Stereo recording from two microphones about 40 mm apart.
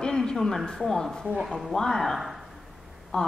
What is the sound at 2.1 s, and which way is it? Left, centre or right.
Speech, centre.